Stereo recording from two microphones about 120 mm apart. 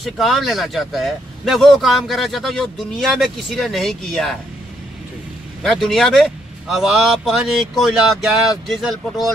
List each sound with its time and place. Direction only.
0.0 s speech: centre (ahead or behind)
5.6 s speech: centre (ahead or behind)